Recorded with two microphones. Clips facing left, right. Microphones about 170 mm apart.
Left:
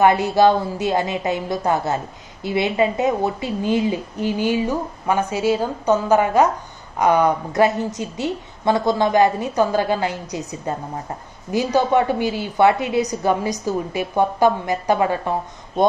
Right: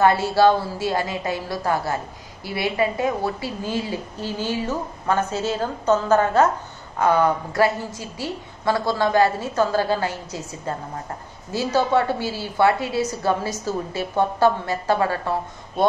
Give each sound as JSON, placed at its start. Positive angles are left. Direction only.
{"t": 0.0, "sound": "a woman's voice", "side_deg": 20}